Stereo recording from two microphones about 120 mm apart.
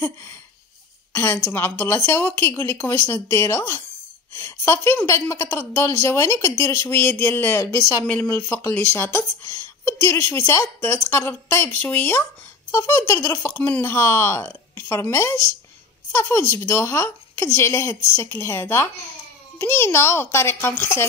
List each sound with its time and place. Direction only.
0.0 s a woman's voice: 20° left (ahead or behind)